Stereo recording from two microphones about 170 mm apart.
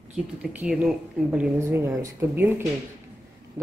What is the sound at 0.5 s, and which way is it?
A woman's voice, 5° right (ahead or behind).